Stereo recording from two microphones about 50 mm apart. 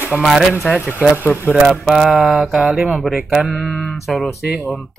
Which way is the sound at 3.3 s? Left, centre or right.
Centre.